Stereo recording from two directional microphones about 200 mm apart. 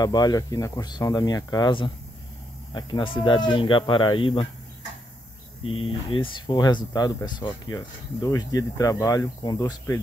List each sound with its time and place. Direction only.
0.0 s speech: 20° left (ahead or behind)
5.6 s speech: 30° left (ahead or behind)